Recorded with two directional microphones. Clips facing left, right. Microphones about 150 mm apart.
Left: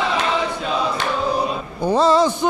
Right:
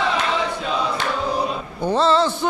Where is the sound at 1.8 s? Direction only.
10° left (ahead or behind).